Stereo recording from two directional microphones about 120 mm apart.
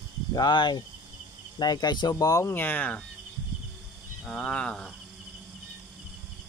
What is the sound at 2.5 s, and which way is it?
Speech, 15° left (ahead or behind).